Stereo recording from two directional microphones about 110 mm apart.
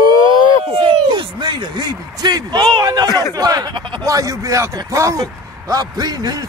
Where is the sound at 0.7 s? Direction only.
45° right (ahead or behind).